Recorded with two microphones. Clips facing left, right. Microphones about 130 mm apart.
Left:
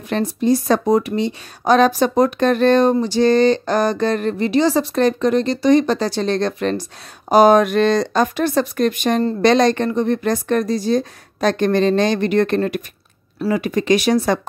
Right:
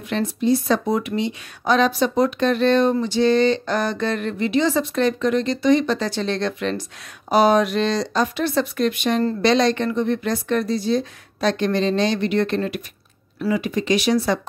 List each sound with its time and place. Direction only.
0.1 s speech: 45° left (ahead or behind)